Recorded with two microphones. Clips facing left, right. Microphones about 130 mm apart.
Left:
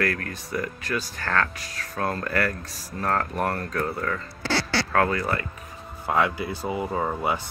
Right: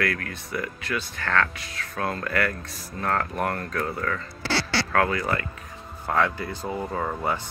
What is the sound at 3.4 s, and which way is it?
Speech, 30° left (ahead or behind).